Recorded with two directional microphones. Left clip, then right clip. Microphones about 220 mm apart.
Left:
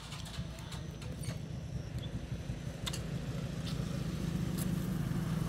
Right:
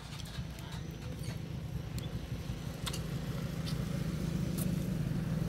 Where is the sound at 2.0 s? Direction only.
20° right (ahead or behind); by 5.2 s 25° left (ahead or behind).